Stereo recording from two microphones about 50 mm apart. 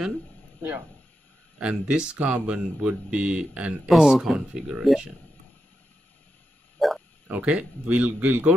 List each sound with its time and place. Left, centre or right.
1.6 s a man's voice: right
3.9 s speech: centre
6.8 s frog: centre
7.2 s a man's voice: right